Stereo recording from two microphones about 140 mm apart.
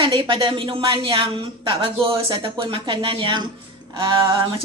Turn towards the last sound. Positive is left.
turn(degrees=-40)  # may be behind; listen again after turning